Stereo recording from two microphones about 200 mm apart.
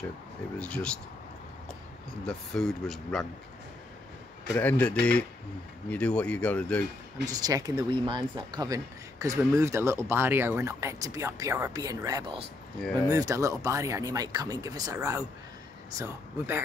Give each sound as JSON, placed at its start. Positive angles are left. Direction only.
{"t": 0.6, "sound": "speech", "side_deg": 5}
{"t": 2.2, "sound": "speech", "side_deg": 0}
{"t": 4.6, "sound": "speech", "side_deg": 5}
{"t": 7.2, "sound": "speech", "side_deg": -20}